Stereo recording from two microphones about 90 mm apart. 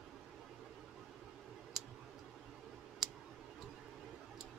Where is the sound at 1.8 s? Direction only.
5° right (ahead or behind).